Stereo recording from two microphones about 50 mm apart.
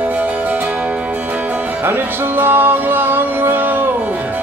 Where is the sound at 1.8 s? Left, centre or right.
Right.